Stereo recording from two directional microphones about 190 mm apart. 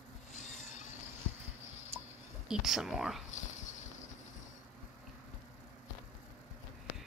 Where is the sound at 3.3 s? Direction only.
40° left (ahead or behind).